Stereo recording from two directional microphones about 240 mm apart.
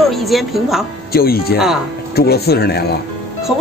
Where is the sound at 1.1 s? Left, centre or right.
Left.